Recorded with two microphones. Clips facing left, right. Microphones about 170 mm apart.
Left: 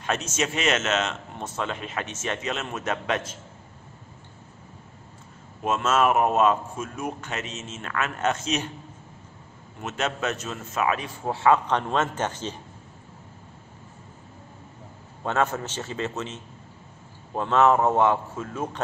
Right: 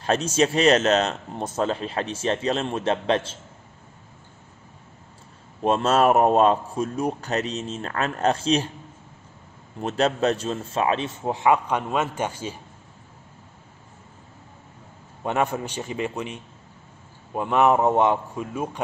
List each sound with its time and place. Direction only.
0.0 s speech: 30° right (ahead or behind)
5.6 s speech: 35° right (ahead or behind)
9.8 s a man's voice: 35° right (ahead or behind); by 12.5 s 10° right (ahead or behind)
15.2 s a man's voice: 15° right (ahead or behind)